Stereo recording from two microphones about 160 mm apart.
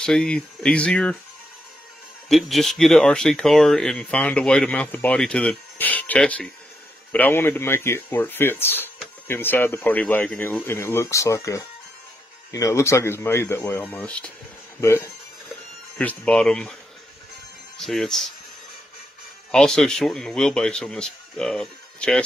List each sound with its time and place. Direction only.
0.0 s speech: 5° left (ahead or behind)
2.2 s speech: centre (ahead or behind)
17.7 s speech: centre (ahead or behind)
19.5 s speech: 5° left (ahead or behind)